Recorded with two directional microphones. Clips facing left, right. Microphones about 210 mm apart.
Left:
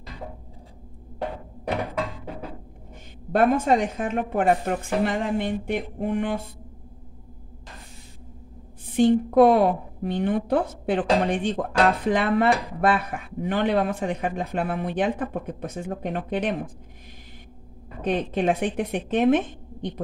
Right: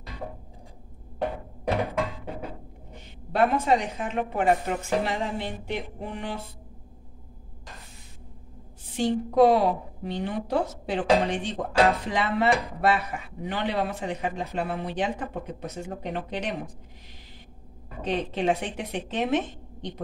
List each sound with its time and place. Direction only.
3.3 s a woman's voice: 50° left (ahead or behind)
8.8 s a woman's voice: 55° left (ahead or behind)
18.0 s a woman's voice: 50° left (ahead or behind)